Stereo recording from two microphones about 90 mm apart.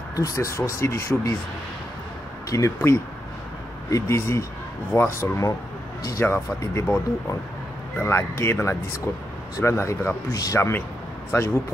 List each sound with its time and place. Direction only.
0.1 s speech: 35° left (ahead or behind)
2.5 s speech: 35° left (ahead or behind)